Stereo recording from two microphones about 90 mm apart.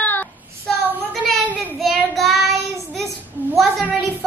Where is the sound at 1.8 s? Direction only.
Centre (ahead or behind).